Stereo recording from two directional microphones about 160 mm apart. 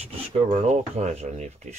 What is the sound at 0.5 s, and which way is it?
Speech, 45° right (ahead or behind).